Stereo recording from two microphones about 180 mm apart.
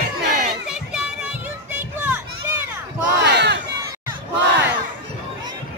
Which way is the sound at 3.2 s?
70° right (ahead or behind).